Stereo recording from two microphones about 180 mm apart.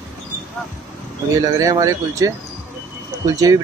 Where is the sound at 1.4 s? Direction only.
20° right (ahead or behind).